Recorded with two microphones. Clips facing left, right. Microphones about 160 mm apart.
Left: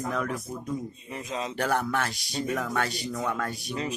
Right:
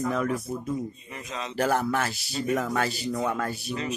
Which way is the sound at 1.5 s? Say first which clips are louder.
Right 3 dB; centre (ahead or behind).